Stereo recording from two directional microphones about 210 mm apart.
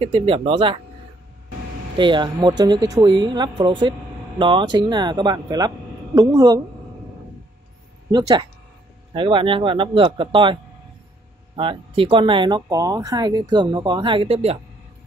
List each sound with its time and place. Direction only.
0.0 s speech: 25° right (ahead or behind)
2.0 s speech: 20° right (ahead or behind)
8.1 s speech: 20° right (ahead or behind)